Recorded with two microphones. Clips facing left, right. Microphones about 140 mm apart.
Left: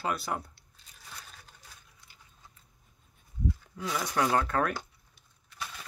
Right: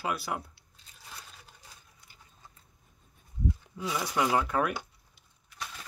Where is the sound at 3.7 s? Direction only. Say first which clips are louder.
Even; 10° right (ahead or behind).